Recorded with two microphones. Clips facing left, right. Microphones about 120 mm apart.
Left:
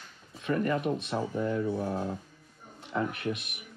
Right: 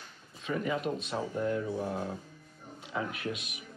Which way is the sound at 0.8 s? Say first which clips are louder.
Left 3 dB; 65° left (ahead or behind).